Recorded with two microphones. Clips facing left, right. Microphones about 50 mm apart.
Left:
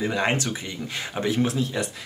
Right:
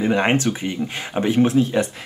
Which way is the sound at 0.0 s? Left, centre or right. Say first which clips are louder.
Right 6 dB; right.